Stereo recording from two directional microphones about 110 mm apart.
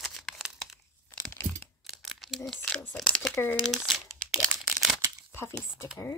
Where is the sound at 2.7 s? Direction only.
10° left (ahead or behind).